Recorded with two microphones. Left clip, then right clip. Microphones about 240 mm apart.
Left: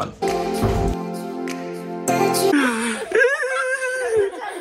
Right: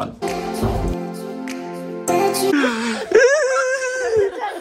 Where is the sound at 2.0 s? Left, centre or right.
Centre.